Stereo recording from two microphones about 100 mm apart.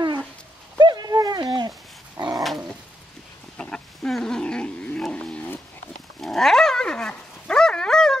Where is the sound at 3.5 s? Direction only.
10° left (ahead or behind).